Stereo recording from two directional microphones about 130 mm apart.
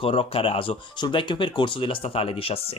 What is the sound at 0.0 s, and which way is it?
Speech, 45° left (ahead or behind).